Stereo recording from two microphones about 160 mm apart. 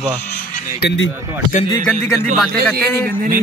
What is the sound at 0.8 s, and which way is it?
Speech, 90° left.